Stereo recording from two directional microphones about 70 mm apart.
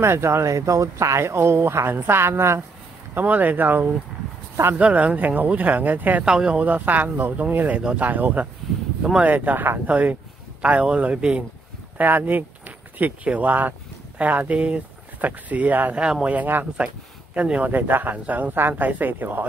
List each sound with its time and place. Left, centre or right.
0.0 s speech: right
3.2 s speech: right
6.2 s speech: centre
12.0 s speech: right
16.0 s speech: centre